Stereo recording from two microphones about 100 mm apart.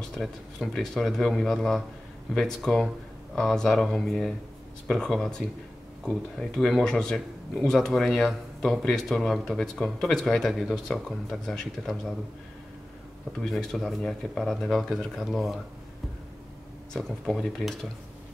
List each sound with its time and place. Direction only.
0.2 s speech: 5° left (ahead or behind)
13.4 s speech: 5° left (ahead or behind)
16.9 s speech: 5° left (ahead or behind)